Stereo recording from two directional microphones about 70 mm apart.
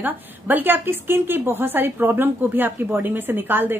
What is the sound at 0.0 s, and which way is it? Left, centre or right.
A woman's voice, right.